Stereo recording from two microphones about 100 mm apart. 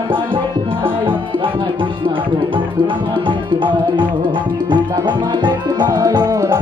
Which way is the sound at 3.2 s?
55° right (ahead or behind).